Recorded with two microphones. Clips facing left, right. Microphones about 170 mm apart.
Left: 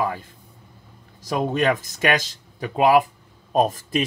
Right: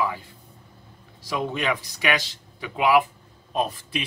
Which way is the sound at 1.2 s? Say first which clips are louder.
Left 5 dB; 45° left (ahead or behind).